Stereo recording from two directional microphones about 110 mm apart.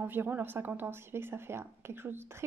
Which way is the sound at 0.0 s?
20° right (ahead or behind).